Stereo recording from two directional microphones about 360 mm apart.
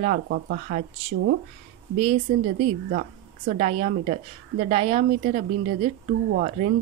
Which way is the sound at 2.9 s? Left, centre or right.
Right.